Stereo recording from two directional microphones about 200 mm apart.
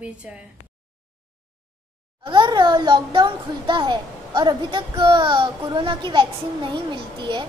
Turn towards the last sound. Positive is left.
turn(degrees=-25)  # may be behind; listen again after turning